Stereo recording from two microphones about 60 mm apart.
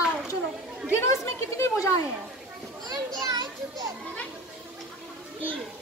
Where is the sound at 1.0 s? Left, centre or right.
Left.